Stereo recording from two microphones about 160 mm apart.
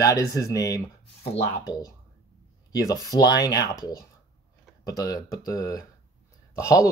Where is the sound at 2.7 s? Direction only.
20° left (ahead or behind).